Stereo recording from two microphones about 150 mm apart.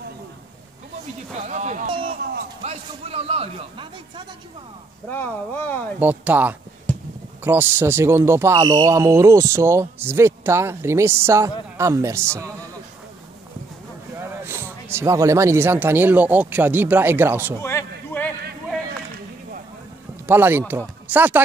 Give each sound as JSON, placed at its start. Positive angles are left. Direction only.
{"t": 1.3, "sound": "speech", "side_deg": -50}
{"t": 2.6, "sound": "a man's voice", "side_deg": -45}
{"t": 5.1, "sound": "speech", "side_deg": 10}
{"t": 5.9, "sound": "speech", "side_deg": -10}
{"t": 14.1, "sound": "a man's voice", "side_deg": -15}
{"t": 17.6, "sound": "a sound", "side_deg": 15}
{"t": 20.2, "sound": "speech", "side_deg": -15}